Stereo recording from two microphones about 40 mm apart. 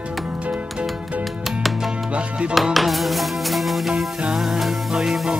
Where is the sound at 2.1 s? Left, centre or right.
Right.